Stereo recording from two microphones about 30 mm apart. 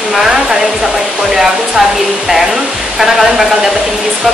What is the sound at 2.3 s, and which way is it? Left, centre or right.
Speech, centre.